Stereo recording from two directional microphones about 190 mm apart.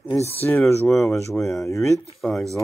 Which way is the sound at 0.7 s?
15° left (ahead or behind).